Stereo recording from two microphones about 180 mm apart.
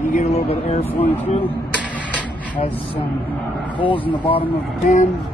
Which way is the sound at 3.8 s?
30° left (ahead or behind).